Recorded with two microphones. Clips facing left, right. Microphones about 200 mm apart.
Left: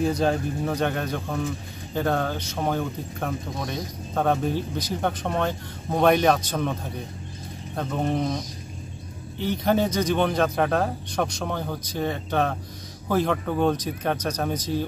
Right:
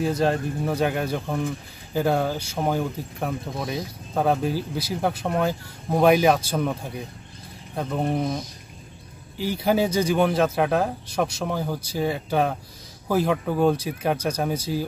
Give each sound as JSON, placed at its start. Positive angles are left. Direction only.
{"t": 0.0, "sound": "speech", "side_deg": 0}
{"t": 9.4, "sound": "speech", "side_deg": -10}